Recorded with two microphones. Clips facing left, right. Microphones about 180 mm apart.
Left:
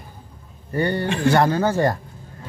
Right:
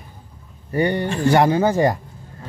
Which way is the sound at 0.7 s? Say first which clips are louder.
Right 2 dB; 15° right (ahead or behind).